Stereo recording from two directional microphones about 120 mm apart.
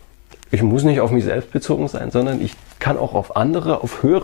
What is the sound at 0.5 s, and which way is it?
Speech, 10° left (ahead or behind).